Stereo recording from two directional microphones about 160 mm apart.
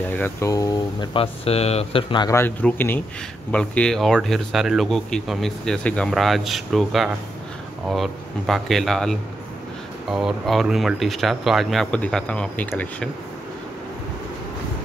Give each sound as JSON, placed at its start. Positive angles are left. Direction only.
{"t": 0.2, "sound": "speech", "side_deg": 20}
{"t": 1.1, "sound": "speech", "side_deg": 35}
{"t": 2.3, "sound": "speech", "side_deg": 15}